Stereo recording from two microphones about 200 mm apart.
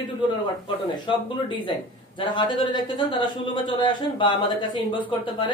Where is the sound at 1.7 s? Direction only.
25° left (ahead or behind).